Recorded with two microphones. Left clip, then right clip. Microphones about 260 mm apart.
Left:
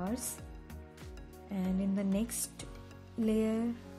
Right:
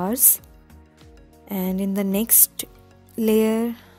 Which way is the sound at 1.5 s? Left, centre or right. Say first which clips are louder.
Right 10 dB; right.